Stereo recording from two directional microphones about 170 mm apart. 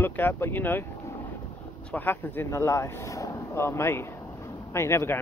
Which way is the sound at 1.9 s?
10° left (ahead or behind).